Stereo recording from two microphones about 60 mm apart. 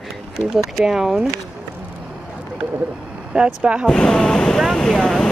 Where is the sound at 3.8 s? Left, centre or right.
Centre.